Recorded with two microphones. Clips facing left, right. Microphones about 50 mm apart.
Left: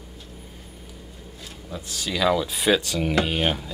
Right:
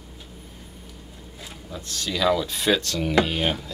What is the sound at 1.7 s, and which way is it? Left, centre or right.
Speech, centre.